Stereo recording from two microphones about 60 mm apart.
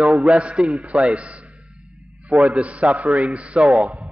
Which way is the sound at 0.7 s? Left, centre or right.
Centre.